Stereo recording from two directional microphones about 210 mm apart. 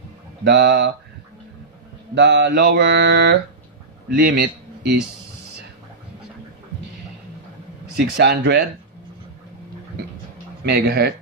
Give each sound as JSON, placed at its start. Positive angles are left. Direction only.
{"t": 0.4, "sound": "mantra", "side_deg": -55}
{"t": 2.1, "sound": "mantra", "side_deg": -55}
{"t": 4.1, "sound": "speech", "side_deg": -50}
{"t": 8.0, "sound": "speech", "side_deg": -50}
{"t": 10.6, "sound": "speech", "side_deg": -50}